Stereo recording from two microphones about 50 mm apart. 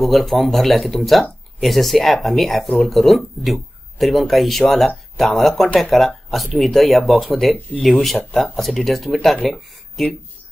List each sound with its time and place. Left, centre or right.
0.0 s speech: centre